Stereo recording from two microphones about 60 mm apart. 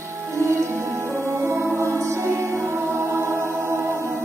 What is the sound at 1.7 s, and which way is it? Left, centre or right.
Music, right.